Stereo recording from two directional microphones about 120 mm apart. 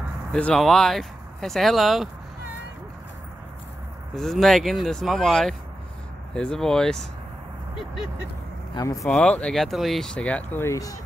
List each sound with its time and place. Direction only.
0.3 s speech: 10° left (ahead or behind)
4.1 s speech: centre (ahead or behind)
8.7 s speech: 30° left (ahead or behind)
9.0 s speech: 5° left (ahead or behind); by 11.0 s 25° left (ahead or behind)